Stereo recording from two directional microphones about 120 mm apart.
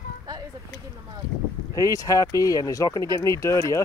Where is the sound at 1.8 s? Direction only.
30° left (ahead or behind).